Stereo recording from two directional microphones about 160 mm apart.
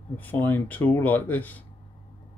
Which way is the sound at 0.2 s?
10° left (ahead or behind).